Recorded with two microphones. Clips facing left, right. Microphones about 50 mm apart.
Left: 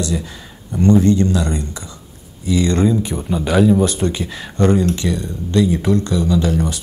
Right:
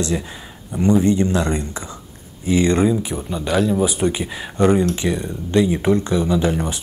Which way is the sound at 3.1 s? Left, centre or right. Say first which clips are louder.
Left 3 dB; centre.